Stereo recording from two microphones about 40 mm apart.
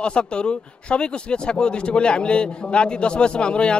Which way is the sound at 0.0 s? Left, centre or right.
Left.